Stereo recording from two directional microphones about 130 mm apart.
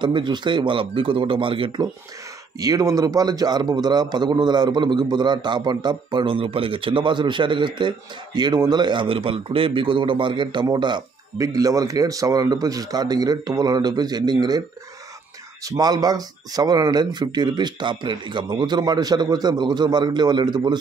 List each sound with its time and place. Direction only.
0.0 s a man's voice: 35° right (ahead or behind)
2.6 s a man's voice: 25° right (ahead or behind)
15.6 s a man's voice: 30° right (ahead or behind)